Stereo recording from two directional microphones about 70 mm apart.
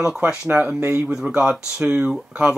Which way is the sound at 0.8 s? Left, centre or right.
Right.